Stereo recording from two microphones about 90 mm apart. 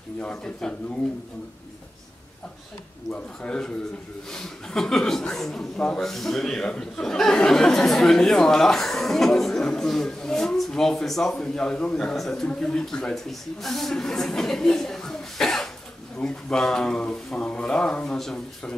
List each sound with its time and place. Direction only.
0.2 s speech: 10° left (ahead or behind)
3.1 s a man's voice: 10° left (ahead or behind)